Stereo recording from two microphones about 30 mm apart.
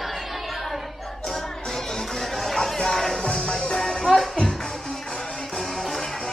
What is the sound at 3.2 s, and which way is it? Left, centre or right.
Music, left.